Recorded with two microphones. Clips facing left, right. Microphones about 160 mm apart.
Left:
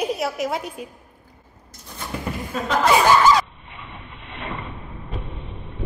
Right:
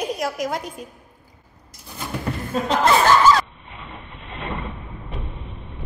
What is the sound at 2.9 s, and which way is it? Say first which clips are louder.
Speech: even; 10° left (ahead or behind).